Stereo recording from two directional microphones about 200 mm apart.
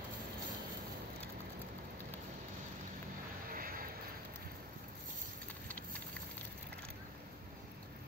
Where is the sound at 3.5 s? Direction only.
45° right (ahead or behind).